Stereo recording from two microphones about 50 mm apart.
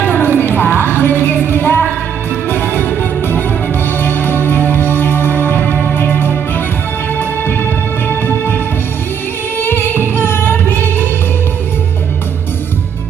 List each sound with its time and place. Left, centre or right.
0.0 s music: left
5.9 s organ: left
7.2 s music: left
9.6 s music: left